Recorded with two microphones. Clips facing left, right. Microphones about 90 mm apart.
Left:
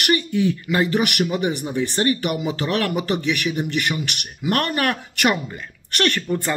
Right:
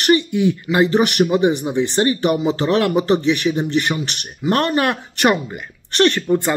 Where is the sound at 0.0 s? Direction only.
20° right (ahead or behind).